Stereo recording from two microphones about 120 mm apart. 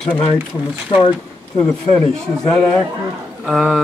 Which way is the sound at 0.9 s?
45° left (ahead or behind).